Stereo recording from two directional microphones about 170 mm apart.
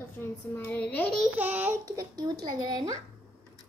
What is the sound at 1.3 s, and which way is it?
Speech, 10° right (ahead or behind).